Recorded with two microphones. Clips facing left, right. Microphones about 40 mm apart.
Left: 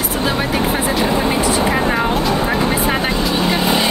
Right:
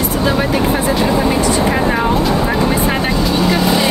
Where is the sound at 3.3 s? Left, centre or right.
Left.